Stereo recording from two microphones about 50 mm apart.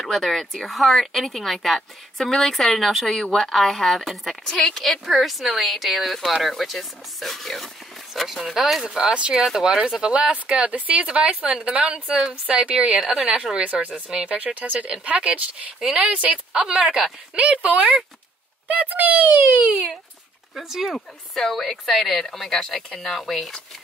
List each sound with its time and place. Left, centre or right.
0.0 s speech: centre
5.0 s speech: centre
8.8 s speech: centre
9.4 s speech: centre
13.6 s speech: right
15.8 s speech: centre
16.1 s speech: right
17.4 s a child's voice: right
20.8 s speech: centre